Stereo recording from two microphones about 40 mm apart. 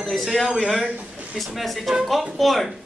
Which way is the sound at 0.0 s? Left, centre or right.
Centre.